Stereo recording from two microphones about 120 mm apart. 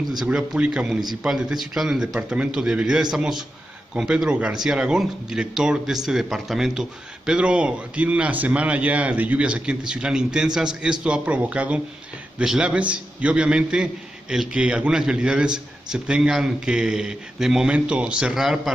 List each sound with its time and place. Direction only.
0.1 s a man's voice: 5° right (ahead or behind)